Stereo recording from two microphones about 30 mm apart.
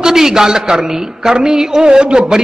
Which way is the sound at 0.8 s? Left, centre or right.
Centre.